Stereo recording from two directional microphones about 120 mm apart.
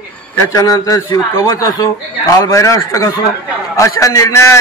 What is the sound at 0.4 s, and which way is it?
A man's voice, 30° left (ahead or behind).